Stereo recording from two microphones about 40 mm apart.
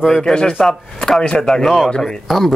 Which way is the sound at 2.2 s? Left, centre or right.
Centre.